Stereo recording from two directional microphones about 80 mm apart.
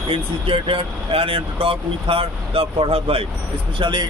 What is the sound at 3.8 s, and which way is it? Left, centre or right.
Speech, right.